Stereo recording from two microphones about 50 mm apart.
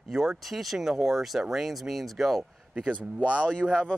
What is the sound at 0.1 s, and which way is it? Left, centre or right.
Speech, centre.